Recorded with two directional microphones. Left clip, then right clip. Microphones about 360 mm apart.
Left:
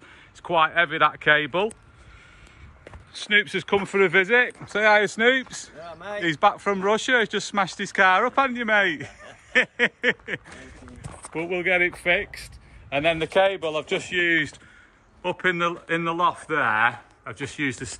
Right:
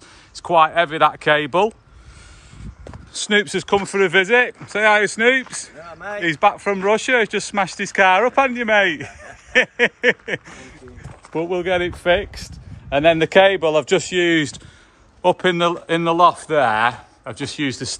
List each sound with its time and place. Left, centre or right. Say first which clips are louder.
0.5 s speech: right 6 dB; centre
2.8 s speech: right 7 dB; centre